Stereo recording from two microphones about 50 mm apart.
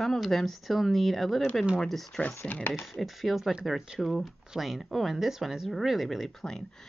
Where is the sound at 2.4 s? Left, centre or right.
Left.